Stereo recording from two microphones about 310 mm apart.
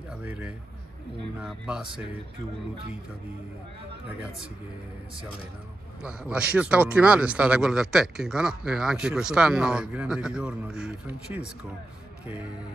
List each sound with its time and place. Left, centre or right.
0.2 s speech: centre
6.0 s speech: centre